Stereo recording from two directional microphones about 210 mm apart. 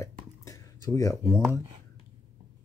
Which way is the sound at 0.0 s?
15° left (ahead or behind).